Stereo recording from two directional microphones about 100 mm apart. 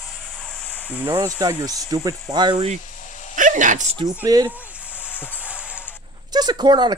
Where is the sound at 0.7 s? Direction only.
20° left (ahead or behind).